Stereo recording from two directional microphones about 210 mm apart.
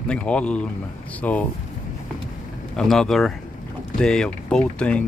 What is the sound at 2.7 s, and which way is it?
Speech, centre (ahead or behind).